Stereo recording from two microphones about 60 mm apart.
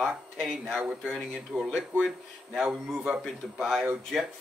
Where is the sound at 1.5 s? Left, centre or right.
Centre.